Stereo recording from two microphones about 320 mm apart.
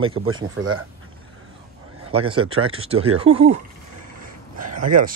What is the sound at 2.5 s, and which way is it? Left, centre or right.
Speech, right.